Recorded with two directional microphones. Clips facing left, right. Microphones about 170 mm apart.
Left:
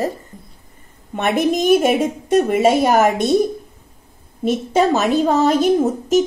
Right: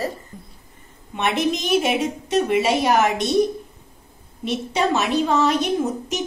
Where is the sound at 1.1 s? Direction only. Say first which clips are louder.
Left 5 dB; 50° left (ahead or behind).